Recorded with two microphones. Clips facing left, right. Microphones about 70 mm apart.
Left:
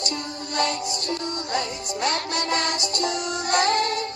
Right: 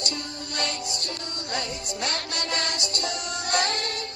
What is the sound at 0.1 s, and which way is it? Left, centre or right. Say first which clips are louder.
Music: left 4 dB; left.